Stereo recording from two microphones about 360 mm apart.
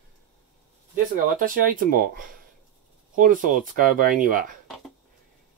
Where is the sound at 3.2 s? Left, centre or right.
Right.